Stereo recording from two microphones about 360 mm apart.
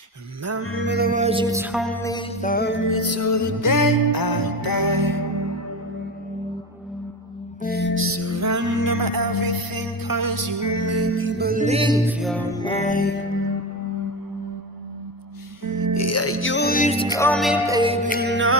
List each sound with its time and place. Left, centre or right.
0.4 s music: right; by 5.2 s left
7.6 s music: left
7.9 s music: right; by 12.2 s centre
12.2 s music: centre; by 13.5 s left
15.7 s music: left; by 17.1 s centre
17.2 s music: centre
18.2 s music: right